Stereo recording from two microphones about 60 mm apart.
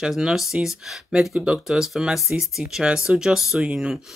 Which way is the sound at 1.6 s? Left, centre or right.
Centre.